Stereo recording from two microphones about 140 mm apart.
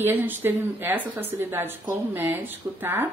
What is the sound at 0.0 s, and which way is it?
Speech, 15° right (ahead or behind).